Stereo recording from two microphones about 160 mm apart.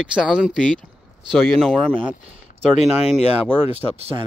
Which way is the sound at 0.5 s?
5° left (ahead or behind).